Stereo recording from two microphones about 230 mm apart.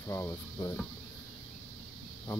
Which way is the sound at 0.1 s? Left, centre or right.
Centre.